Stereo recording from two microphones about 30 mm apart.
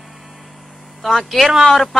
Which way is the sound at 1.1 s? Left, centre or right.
Centre.